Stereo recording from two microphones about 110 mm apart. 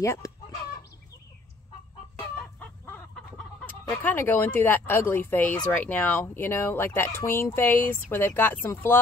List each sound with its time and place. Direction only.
0.0 s speech: 25° left (ahead or behind)
2.1 s chicken: 15° left (ahead or behind)
3.6 s speech: 20° left (ahead or behind)